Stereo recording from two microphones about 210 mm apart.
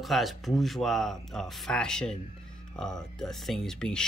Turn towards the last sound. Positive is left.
turn(degrees=5)  # may be behind; listen again after turning